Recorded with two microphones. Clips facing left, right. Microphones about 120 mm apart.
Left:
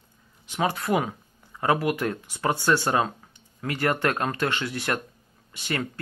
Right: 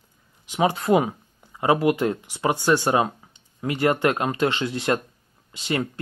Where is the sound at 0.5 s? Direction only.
20° right (ahead or behind).